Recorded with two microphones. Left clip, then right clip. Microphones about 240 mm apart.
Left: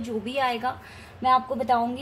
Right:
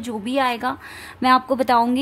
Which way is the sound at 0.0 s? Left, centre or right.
Right.